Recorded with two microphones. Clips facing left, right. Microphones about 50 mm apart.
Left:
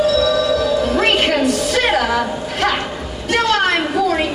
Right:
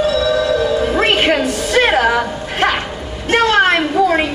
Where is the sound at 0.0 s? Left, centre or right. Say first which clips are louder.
Even; right.